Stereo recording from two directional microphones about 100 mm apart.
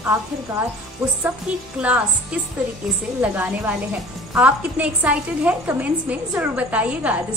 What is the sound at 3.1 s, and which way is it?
A woman's voice, 15° right (ahead or behind).